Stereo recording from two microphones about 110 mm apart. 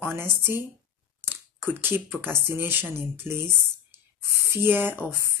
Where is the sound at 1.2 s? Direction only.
20° right (ahead or behind).